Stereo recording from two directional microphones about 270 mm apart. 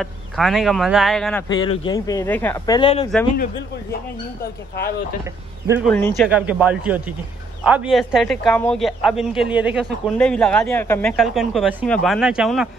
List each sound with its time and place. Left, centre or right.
0.0 s speech: centre
1.6 s speech: centre
4.4 s speech: left
5.9 s speech: centre